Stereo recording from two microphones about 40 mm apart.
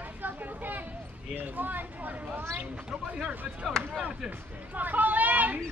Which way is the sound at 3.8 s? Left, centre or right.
Centre.